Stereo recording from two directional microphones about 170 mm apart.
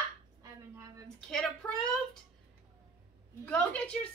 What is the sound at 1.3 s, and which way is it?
Speech, 5° left (ahead or behind).